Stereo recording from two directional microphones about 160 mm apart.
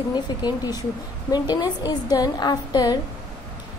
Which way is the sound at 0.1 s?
25° left (ahead or behind).